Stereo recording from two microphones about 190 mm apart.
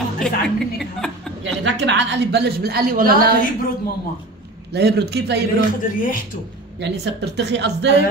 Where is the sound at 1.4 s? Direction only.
70° right (ahead or behind); by 3.3 s 50° right (ahead or behind).